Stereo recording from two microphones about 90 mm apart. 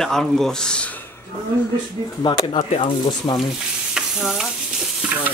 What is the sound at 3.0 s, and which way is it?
Speech, 50° left (ahead or behind).